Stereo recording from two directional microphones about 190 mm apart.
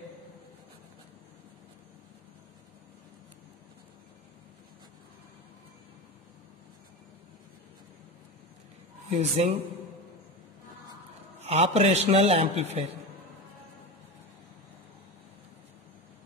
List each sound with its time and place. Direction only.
9.1 s a man's voice: 35° right (ahead or behind)
11.3 s a man's voice: 30° right (ahead or behind)